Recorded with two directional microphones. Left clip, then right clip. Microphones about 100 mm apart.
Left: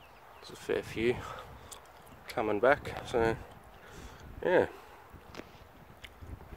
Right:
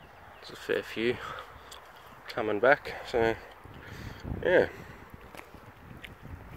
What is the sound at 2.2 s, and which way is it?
Speech, 25° left (ahead or behind).